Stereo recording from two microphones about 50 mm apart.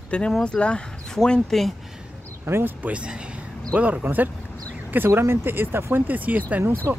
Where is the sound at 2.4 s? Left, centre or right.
Right.